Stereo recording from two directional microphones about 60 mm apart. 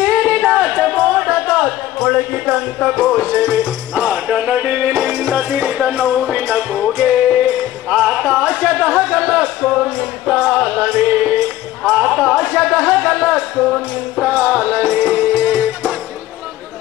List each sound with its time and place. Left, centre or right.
0.0 s music: right; by 3.1 s centre
3.3 s music: right
11.9 s speech: centre
13.7 s music: centre
14.3 s music: right